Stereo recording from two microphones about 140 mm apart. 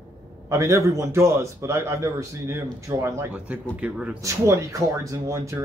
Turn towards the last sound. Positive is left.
turn(degrees=-20)  # may be behind; listen again after turning